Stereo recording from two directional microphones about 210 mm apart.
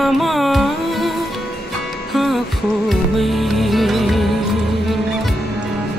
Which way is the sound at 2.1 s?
Centre (ahead or behind).